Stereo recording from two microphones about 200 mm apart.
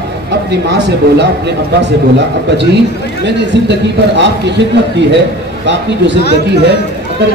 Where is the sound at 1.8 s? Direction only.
60° right (ahead or behind).